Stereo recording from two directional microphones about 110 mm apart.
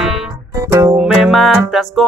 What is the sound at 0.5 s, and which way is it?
Music, 25° right (ahead or behind).